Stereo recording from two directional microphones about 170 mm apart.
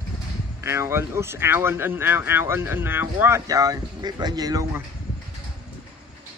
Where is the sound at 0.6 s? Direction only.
15° right (ahead or behind).